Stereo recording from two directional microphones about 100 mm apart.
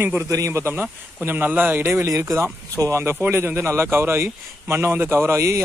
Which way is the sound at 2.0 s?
30° right (ahead or behind).